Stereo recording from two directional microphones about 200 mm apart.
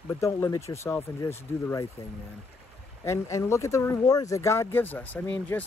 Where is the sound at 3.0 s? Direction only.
15° left (ahead or behind).